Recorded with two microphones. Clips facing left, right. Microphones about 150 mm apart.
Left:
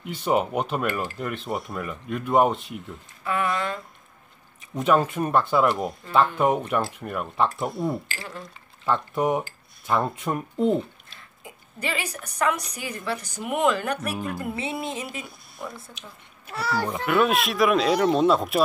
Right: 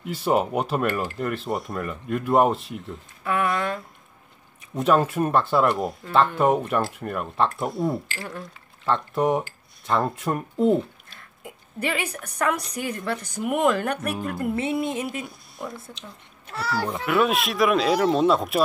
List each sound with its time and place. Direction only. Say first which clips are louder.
0.0 s speech: right 1 dB; centre (ahead or behind)
3.3 s speech: right 2 dB; 55° right (ahead or behind)
4.7 s speech: right 1 dB; centre (ahead or behind)
11.8 s speech: right 3 dB; 55° right (ahead or behind)
14.1 s speech: right 1 dB; 5° left (ahead or behind)
14.4 s speech: right 5 dB; 50° right (ahead or behind)
16.4 s speech: even; centre (ahead or behind)